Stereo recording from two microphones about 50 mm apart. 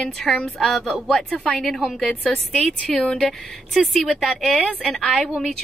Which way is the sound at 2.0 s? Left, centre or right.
Centre.